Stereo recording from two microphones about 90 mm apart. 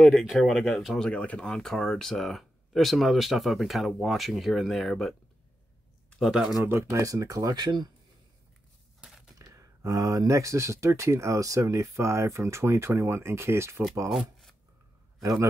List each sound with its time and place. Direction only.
0.1 s speech: centre (ahead or behind)
6.1 s speech: 5° right (ahead or behind)
6.6 s speech: 30° right (ahead or behind)
7.5 s speech: 55° right (ahead or behind)
9.0 s a sound: 5° right (ahead or behind)
9.4 s speech: 35° right (ahead or behind)
14.0 s speech: centre (ahead or behind)